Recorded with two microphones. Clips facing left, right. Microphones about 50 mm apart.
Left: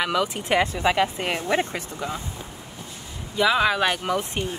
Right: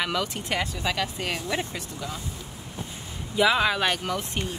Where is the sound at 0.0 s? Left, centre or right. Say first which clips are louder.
Left 4 dB; centre.